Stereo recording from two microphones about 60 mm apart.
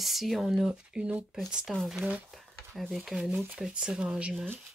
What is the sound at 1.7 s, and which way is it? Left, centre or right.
Speech, centre.